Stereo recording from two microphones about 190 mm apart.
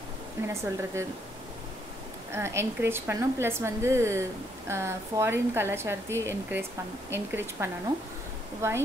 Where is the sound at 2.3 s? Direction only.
15° right (ahead or behind).